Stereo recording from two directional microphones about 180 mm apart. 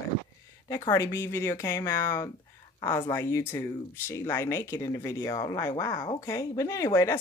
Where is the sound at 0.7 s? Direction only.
20° left (ahead or behind).